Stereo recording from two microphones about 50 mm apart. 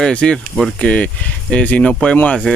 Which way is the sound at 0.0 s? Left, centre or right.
Centre.